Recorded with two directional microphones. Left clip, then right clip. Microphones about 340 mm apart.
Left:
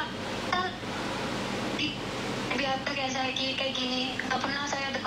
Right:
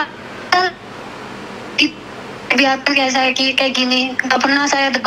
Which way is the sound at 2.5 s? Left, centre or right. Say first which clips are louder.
Right 18 dB; right.